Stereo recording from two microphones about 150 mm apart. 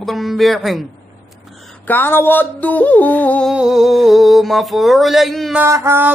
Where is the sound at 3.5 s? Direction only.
5° right (ahead or behind).